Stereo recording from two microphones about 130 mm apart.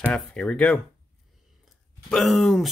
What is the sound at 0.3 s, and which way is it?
Speech, 10° left (ahead or behind).